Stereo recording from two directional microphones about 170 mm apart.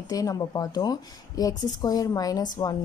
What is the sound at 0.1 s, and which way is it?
A woman's voice, 20° left (ahead or behind).